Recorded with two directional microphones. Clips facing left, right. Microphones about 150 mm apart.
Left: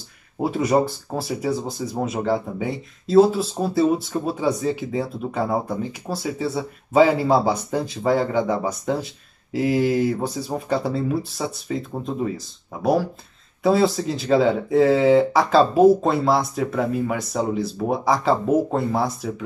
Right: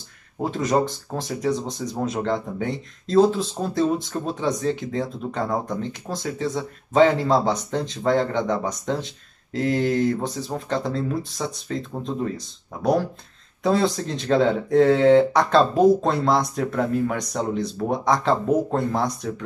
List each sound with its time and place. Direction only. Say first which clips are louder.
0.4 s speech: left 2 dB; 10° left (ahead or behind)